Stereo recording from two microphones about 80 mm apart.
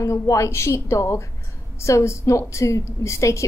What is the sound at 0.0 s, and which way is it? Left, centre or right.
A woman's voice, left.